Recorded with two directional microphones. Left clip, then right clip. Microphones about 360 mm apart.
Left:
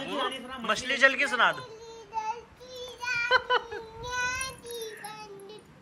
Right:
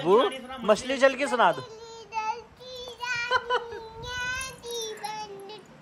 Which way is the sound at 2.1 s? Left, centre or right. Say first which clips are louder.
Right 2 dB; centre.